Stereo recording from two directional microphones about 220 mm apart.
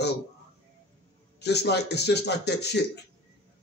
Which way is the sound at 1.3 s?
50° left (ahead or behind).